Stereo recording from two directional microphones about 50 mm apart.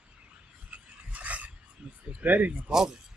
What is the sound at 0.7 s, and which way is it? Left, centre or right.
Filing, right.